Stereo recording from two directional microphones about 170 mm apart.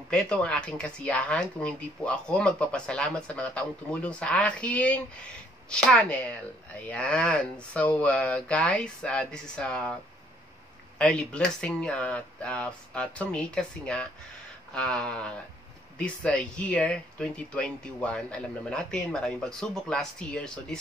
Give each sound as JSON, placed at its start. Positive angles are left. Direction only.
{"t": 0.1, "sound": "speech", "side_deg": 5}
{"t": 11.0, "sound": "speech", "side_deg": 5}